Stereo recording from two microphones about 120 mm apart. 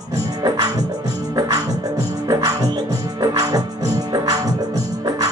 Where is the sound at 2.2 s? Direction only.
30° right (ahead or behind).